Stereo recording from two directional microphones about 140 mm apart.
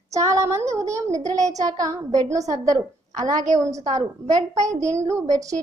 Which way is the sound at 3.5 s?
25° right (ahead or behind).